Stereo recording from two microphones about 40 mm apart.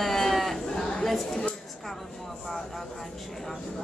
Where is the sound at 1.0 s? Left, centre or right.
Centre.